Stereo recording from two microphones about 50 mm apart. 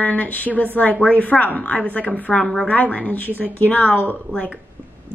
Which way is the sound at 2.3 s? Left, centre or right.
Centre.